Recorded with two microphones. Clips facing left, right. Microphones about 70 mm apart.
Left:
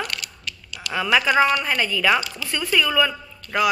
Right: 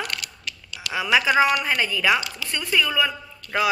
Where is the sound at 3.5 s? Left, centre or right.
Centre.